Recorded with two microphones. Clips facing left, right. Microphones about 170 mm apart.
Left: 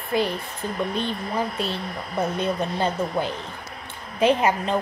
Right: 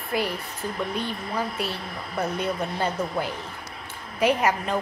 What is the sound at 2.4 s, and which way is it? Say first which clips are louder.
Speech: left 3 dB; 25° left (ahead or behind).